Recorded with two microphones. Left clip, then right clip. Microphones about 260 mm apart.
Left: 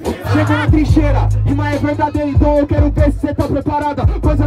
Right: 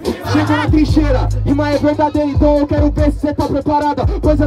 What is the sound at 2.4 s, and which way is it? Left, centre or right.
Speech, centre.